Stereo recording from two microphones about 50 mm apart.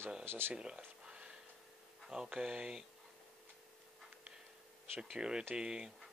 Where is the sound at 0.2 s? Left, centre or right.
Right.